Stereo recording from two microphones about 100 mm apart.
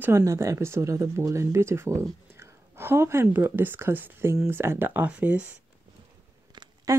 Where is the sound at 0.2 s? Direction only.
30° right (ahead or behind); by 5.5 s 10° right (ahead or behind).